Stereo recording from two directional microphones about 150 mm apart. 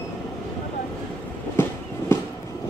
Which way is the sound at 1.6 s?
15° left (ahead or behind).